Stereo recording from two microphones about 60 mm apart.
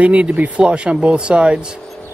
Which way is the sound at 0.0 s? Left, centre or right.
Right.